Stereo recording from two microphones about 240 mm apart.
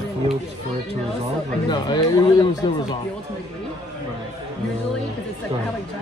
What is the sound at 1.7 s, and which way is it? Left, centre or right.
Speech, centre.